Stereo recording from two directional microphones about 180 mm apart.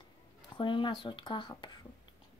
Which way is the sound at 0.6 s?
30° left (ahead or behind).